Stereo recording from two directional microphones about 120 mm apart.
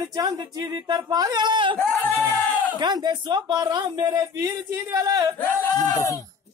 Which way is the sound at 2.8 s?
35° right (ahead or behind).